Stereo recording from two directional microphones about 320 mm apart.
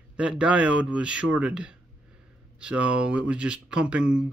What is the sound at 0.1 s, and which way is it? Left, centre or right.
Speech, centre.